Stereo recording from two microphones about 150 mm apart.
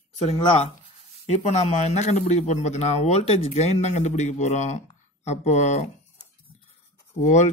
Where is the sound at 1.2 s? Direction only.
45° left (ahead or behind).